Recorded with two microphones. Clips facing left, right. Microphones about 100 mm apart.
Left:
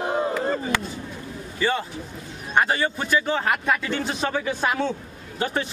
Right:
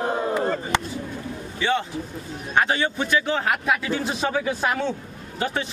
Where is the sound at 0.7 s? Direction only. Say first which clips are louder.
Right 2 dB; 20° right (ahead or behind).